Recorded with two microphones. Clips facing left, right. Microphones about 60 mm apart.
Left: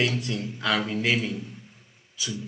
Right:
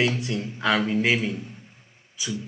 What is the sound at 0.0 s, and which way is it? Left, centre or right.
Speech, right.